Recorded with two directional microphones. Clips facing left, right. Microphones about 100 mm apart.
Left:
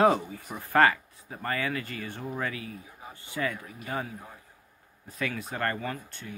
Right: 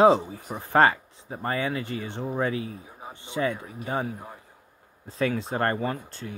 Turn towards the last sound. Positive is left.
turn(degrees=-30)  # may be behind; listen again after turning